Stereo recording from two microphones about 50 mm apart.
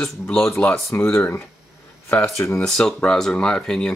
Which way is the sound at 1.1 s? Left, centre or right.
Left.